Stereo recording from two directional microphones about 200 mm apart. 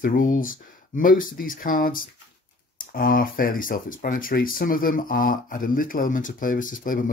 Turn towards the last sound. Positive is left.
turn(degrees=45)  # may be behind; listen again after turning